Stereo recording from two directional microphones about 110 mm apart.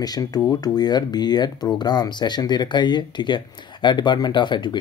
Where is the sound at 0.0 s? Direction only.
35° left (ahead or behind).